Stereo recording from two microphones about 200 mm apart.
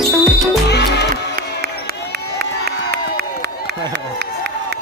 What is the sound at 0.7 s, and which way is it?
Music, 55° left (ahead or behind).